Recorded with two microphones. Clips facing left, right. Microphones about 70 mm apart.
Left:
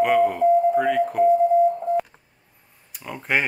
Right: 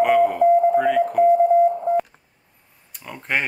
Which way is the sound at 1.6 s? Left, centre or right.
Right.